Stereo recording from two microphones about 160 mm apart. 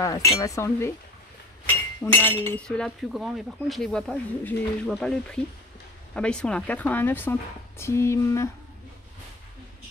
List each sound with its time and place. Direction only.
0.0 s speech: 20° left (ahead or behind)
2.2 s speech: 10° left (ahead or behind)